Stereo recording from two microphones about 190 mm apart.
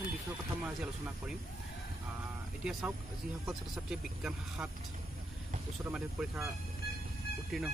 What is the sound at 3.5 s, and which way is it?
Speech, 5° right (ahead or behind).